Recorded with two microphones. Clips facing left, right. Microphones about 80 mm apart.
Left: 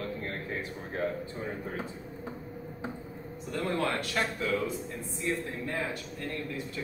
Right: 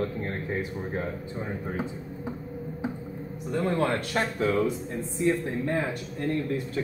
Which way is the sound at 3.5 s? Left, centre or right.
Right.